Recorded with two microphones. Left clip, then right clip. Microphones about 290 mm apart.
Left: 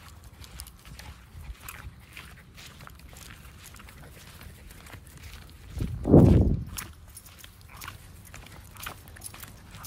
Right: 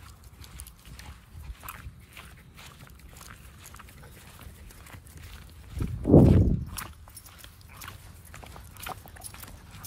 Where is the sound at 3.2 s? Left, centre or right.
Centre.